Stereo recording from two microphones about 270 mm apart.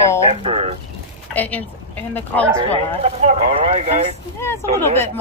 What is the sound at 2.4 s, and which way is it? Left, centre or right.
Speech, centre.